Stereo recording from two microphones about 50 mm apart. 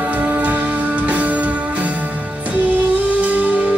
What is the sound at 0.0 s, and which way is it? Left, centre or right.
Music, right.